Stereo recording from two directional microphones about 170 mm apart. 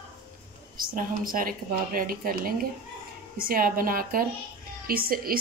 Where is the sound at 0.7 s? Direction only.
55° right (ahead or behind).